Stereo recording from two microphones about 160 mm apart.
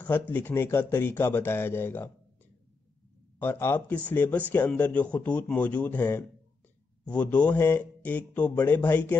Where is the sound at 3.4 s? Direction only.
15° left (ahead or behind).